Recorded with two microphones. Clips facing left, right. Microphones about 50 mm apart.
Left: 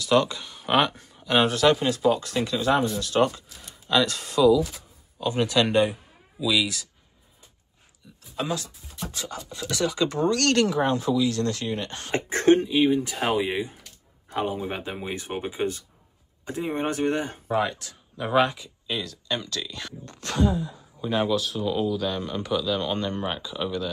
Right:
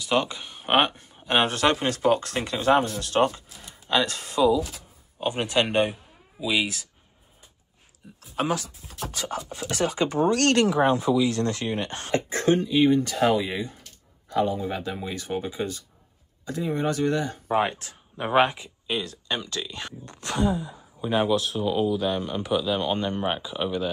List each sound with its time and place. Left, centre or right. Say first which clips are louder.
0.0 s speech: left 3 dB; centre
3.3 s a sound: even; right
4.0 s speech: left 3 dB; right
8.8 s beatboxing: right 2 dB; right
9.5 s speech: left 1 dB; right
10.0 s speech: right 2 dB; centre
11.2 s speech: even; right
12.1 s speech: left 3 dB; left
12.7 s speech: right 1 dB; centre; by 17.4 s left
17.5 s speech: right 1 dB; right
20.1 s speech: left 1 dB; centre